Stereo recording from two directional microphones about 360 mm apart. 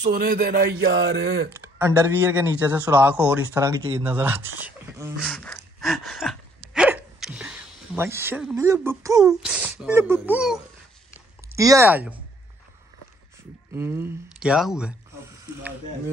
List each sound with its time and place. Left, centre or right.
0.0 s speech: right
1.5 s speech: centre
13.7 s speech: centre